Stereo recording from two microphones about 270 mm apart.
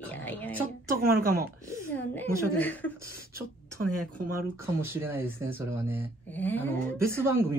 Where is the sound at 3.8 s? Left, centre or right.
Right.